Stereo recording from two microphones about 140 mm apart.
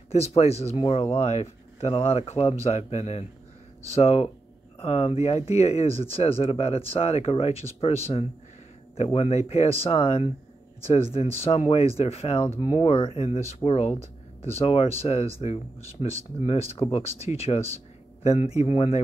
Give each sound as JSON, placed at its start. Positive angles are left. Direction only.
{"t": 0.1, "sound": "speech", "side_deg": 50}